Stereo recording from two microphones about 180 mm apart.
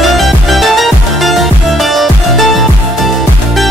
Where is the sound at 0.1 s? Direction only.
Centre (ahead or behind).